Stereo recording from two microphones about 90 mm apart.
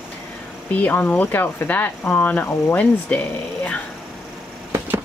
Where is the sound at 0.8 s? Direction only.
20° left (ahead or behind).